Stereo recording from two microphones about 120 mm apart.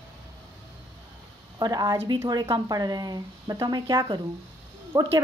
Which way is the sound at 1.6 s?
30° right (ahead or behind).